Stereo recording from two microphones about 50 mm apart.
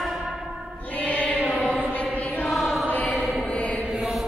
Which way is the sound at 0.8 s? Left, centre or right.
Left.